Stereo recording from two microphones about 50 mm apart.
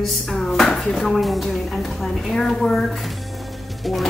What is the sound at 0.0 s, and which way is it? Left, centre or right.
Chopping, centre.